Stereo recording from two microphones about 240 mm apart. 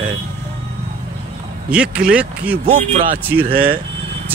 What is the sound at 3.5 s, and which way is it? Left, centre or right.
Speech, right.